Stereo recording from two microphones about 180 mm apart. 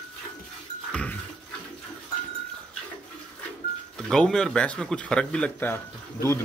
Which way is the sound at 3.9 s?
5° left (ahead or behind).